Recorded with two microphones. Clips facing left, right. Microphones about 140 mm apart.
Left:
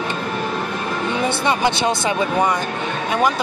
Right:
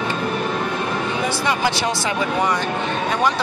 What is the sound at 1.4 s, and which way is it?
Speech, 25° left (ahead or behind).